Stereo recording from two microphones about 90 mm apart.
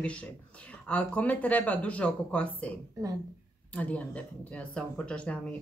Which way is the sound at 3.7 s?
15° left (ahead or behind).